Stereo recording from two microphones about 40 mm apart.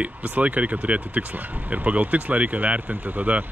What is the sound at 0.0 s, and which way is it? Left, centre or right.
Speech, right.